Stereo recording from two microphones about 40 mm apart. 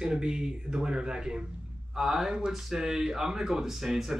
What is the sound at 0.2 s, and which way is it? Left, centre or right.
Speech, right.